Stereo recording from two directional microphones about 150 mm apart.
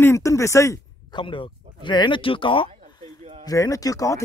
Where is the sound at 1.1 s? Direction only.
35° left (ahead or behind).